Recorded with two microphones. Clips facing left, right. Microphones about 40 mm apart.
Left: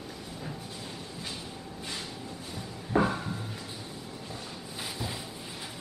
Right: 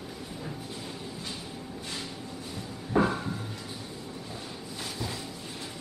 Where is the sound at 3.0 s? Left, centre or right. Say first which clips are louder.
Right 1 dB; centre.